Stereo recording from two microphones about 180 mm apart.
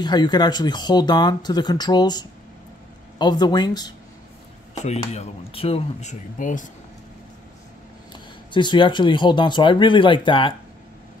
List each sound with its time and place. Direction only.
0.0 s speech: 25° left (ahead or behind)
4.8 s speech: 35° left (ahead or behind)
8.1 s speech: 25° left (ahead or behind)